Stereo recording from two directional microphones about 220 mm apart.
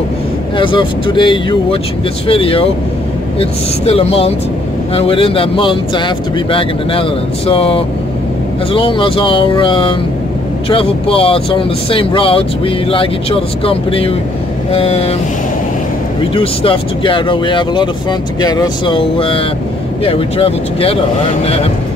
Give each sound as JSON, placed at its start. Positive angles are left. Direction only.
{"t": 0.6, "sound": "speech", "side_deg": 20}
{"t": 16.3, "sound": "speech", "side_deg": 25}